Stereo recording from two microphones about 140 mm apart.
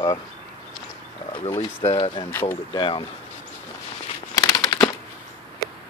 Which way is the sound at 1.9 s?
40° left (ahead or behind).